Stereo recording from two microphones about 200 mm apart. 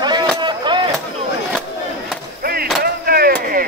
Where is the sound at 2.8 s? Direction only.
50° right (ahead or behind).